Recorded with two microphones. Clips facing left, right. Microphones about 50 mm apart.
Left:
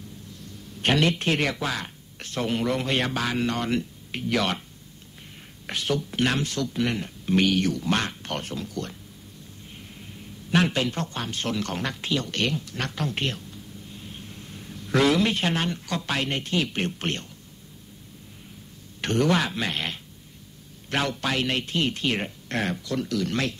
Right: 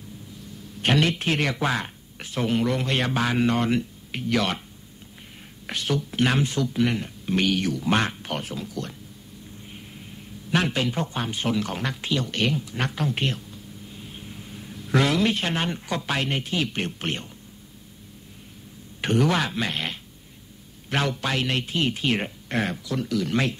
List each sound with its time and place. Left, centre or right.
0.7 s a man's voice: centre
1.6 s speech: centre
5.7 s a man's voice: centre
6.3 s speech: centre
6.7 s a man's voice: centre
7.9 s speech: centre
8.2 s a man's voice: centre
9.9 s a sound: centre
11.0 s speech: centre
15.6 s speech: centre
16.0 s a man's voice: centre
18.9 s a man's voice: centre